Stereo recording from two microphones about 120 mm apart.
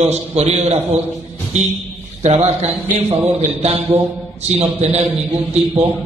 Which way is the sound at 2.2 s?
60° right (ahead or behind).